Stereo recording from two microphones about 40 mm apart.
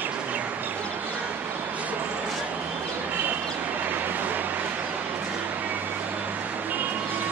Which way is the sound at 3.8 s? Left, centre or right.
Right.